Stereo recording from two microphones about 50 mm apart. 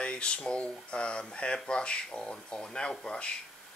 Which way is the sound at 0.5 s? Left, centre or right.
Left.